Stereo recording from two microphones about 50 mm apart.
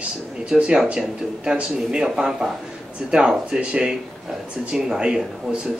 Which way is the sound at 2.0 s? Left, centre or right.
Centre.